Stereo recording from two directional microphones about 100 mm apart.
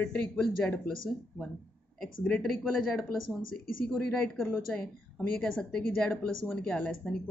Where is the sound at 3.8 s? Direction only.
10° left (ahead or behind).